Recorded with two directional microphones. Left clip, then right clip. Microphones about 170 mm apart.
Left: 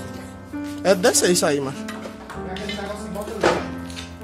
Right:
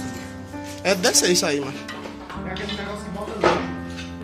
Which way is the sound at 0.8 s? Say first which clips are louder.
Left 2 dB; 40° left (ahead or behind).